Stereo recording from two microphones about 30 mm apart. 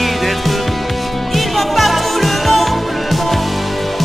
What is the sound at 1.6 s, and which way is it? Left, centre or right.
Music, centre.